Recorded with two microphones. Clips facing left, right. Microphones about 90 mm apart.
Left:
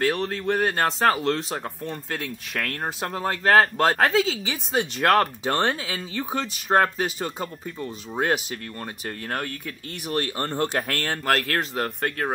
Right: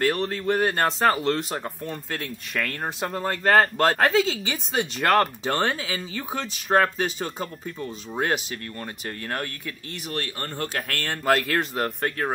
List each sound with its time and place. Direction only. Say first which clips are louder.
0.0 s speech: even; centre (ahead or behind)
10.3 s speech: left 5 dB; 30° left (ahead or behind)
11.1 s speech: right 4 dB; 5° right (ahead or behind)